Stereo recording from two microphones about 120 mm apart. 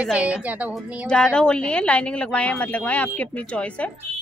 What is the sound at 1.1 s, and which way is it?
Speech, 5° left (ahead or behind).